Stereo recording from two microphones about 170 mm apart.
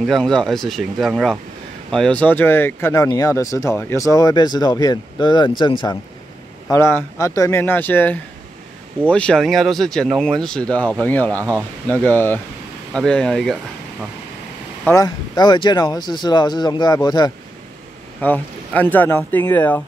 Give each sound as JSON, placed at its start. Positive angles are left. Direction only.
{"t": 0.0, "sound": "speech", "side_deg": 5}
{"t": 6.7, "sound": "speech", "side_deg": 15}
{"t": 14.9, "sound": "speech", "side_deg": 20}
{"t": 18.2, "sound": "speech", "side_deg": 10}